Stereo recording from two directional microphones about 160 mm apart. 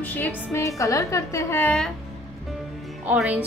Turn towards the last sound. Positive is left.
turn(degrees=-10)  # may be behind; listen again after turning